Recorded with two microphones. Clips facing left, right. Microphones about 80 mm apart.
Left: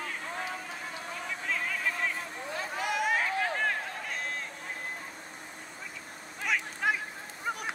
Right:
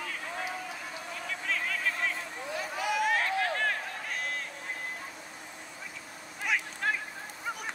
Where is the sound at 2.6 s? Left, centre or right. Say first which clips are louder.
Right 1 dB; left.